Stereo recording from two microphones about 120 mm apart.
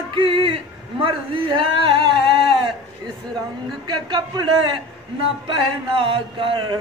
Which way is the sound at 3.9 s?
35° right (ahead or behind).